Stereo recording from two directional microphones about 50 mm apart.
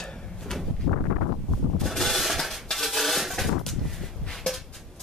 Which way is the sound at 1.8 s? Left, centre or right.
Centre.